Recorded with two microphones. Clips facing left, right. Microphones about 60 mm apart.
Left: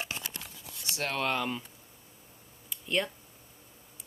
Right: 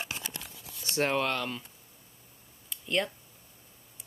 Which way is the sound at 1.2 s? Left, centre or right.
Centre.